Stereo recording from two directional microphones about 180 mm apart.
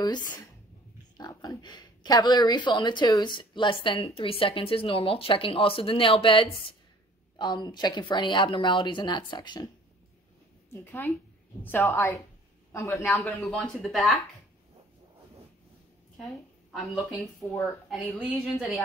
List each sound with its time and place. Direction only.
0.0 s speech: 20° left (ahead or behind)
10.7 s a woman's voice: 10° left (ahead or behind)
13.0 s a woman's voice: centre (ahead or behind)
16.2 s a woman's voice: centre (ahead or behind)
17.4 s a woman's voice: 10° left (ahead or behind)
17.8 s a woman's voice: centre (ahead or behind)